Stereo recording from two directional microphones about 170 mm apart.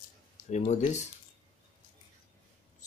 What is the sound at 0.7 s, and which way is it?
Speech, 45° left (ahead or behind).